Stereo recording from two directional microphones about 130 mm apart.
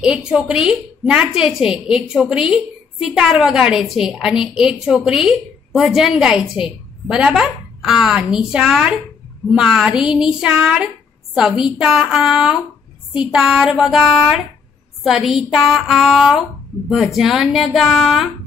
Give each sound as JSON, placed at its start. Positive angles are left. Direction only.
{"t": 0.0, "sound": "a woman's voice", "side_deg": -5}